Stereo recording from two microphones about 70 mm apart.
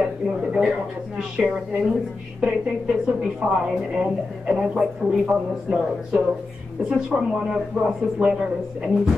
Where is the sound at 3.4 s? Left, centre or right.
Centre.